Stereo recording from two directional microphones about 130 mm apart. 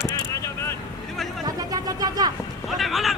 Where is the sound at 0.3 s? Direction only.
20° left (ahead or behind).